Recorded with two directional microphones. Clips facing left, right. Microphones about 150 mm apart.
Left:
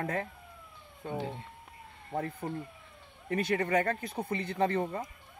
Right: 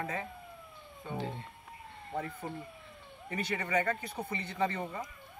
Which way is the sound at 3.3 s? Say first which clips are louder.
Left 6 dB; 50° left (ahead or behind).